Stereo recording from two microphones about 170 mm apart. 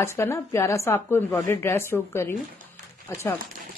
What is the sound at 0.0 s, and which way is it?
Speech, 15° left (ahead or behind).